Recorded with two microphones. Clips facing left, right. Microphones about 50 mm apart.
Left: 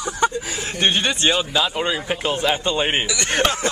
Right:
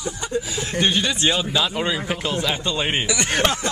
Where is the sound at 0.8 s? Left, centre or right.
Left.